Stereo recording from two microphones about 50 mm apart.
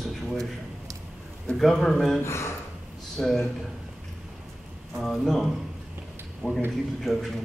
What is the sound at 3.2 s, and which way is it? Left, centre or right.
Speech, centre.